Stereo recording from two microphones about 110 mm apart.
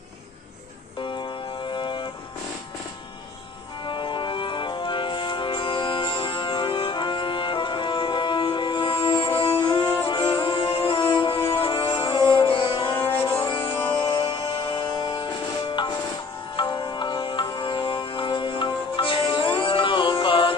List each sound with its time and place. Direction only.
1.0 s music: 45° left (ahead or behind)
3.8 s music: 50° left (ahead or behind)
13.0 s music: 20° left (ahead or behind)
13.5 s music: 50° left (ahead or behind)